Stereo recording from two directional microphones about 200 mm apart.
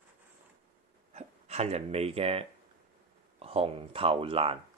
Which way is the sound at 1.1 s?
35° right (ahead or behind).